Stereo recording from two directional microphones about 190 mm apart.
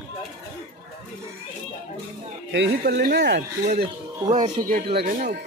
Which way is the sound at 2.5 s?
60° right (ahead or behind).